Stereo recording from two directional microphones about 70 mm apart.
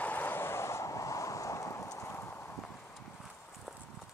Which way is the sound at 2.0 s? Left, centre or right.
Left.